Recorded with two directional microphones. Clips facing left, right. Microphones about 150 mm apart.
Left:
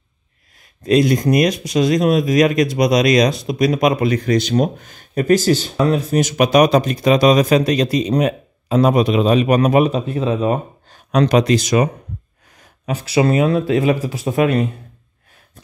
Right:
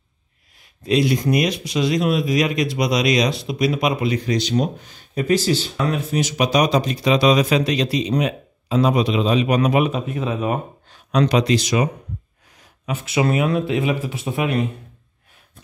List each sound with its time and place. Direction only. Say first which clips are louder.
0.8 s speech: left 4 dB; 45° left (ahead or behind)
11.1 s speech: left 3 dB; 50° left (ahead or behind)